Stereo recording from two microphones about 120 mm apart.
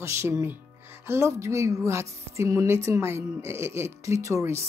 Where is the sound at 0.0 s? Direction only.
25° right (ahead or behind).